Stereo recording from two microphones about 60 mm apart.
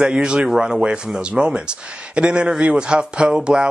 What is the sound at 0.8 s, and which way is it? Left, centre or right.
Speech, right.